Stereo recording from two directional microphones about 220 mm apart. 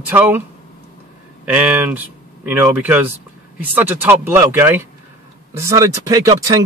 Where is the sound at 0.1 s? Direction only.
10° right (ahead or behind).